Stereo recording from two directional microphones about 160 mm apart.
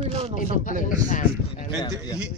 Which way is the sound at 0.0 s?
35° right (ahead or behind).